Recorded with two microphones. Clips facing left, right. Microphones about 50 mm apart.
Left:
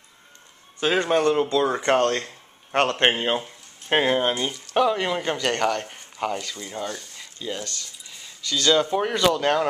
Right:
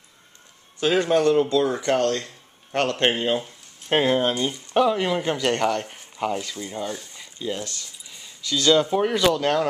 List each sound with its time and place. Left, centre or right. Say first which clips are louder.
0.9 s speech: right 2 dB; centre
1.8 s speech: left 1 dB; left; by 9.7 s centre